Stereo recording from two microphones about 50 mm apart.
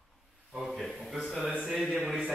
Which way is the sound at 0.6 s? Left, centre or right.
Centre.